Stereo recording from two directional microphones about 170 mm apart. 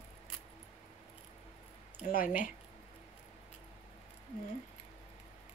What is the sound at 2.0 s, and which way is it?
Speech, 55° left (ahead or behind).